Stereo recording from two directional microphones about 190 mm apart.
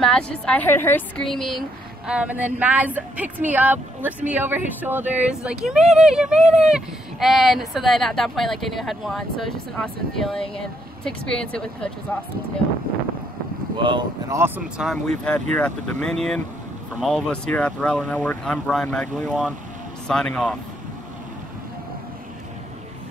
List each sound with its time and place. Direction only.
0.0 s a woman's voice: 5° left (ahead or behind)
13.7 s speech: 25° right (ahead or behind)
14.4 s a woman's voice: 5° right (ahead or behind)